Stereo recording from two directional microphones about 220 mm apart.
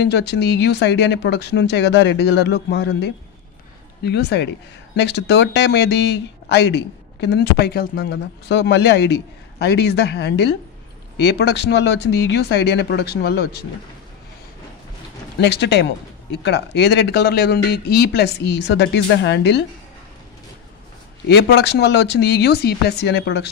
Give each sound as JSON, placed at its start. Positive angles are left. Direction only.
{"t": 0.0, "sound": "speech", "side_deg": 50}
{"t": 15.4, "sound": "speech", "side_deg": 50}
{"t": 21.3, "sound": "speech", "side_deg": 50}